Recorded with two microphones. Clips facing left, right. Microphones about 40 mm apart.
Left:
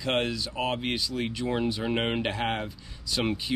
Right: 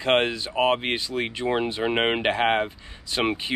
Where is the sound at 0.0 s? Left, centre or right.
Right.